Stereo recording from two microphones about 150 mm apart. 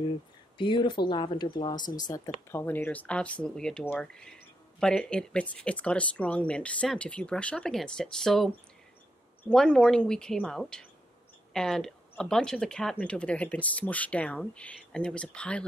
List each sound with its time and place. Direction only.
0.6 s speech: 30° left (ahead or behind); by 8.5 s 5° left (ahead or behind)
9.5 s speech: 5° left (ahead or behind)